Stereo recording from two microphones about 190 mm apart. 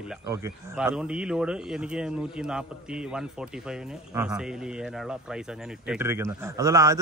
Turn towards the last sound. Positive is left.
turn(degrees=-15)  # may be behind; listen again after turning